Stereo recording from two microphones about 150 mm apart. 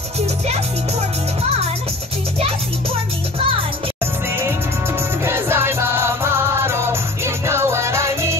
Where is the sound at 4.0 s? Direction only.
15° right (ahead or behind).